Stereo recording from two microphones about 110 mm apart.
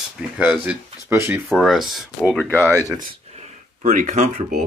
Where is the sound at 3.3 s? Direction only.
80° right.